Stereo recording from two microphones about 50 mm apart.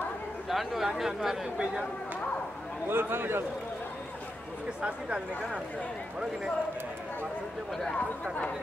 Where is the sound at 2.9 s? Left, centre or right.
Right.